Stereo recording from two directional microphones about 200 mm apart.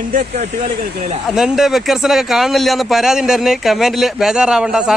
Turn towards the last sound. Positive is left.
turn(degrees=-5)  # may be behind; listen again after turning